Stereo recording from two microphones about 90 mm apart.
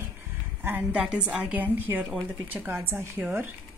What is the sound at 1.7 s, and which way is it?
A woman's voice, 20° right (ahead or behind).